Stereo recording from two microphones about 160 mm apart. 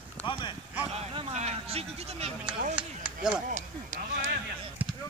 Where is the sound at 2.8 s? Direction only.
5° right (ahead or behind).